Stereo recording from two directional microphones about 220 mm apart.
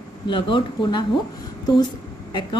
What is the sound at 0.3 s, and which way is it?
Speech, 20° left (ahead or behind).